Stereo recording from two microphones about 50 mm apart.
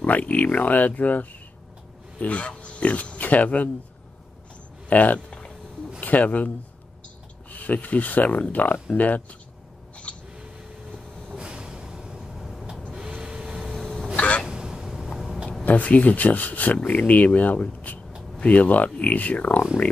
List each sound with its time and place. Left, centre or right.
0.0 s speech: left
4.8 s speech: left
10.1 s owl: left
11.3 s a sound: centre
13.2 s vehicle: right
13.6 s a sound: centre
14.1 s a sound: left
14.4 s vehicle: centre
15.6 s speech: left